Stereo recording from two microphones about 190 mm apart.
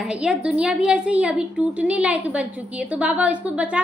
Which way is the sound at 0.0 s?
5° right (ahead or behind).